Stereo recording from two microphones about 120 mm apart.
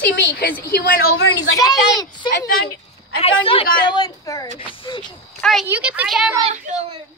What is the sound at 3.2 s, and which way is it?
A woman's voice, 50° left (ahead or behind).